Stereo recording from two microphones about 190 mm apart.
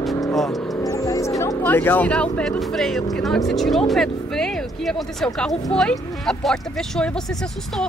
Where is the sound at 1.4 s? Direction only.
10° left (ahead or behind).